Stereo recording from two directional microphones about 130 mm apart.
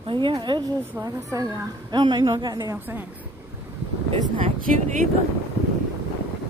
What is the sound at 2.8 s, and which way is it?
Speech, 15° right (ahead or behind).